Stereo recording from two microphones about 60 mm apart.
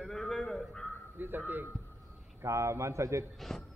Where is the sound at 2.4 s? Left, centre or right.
Right.